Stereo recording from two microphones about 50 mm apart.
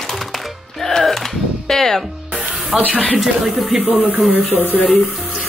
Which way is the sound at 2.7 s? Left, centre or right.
Right.